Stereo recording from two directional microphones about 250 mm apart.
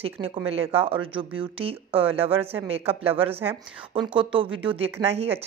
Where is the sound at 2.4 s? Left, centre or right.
Centre.